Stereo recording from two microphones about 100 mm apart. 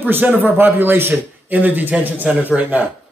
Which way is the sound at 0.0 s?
20° right (ahead or behind).